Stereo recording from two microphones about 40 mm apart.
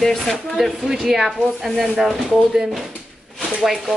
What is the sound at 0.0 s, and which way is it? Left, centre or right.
Speech, centre.